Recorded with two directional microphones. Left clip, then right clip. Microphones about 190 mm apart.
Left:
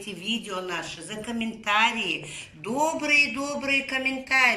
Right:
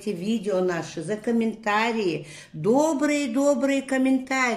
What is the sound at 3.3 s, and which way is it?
Speech, 50° right (ahead or behind).